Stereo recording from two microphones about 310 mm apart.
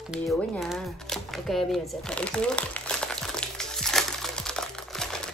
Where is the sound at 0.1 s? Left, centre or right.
Centre.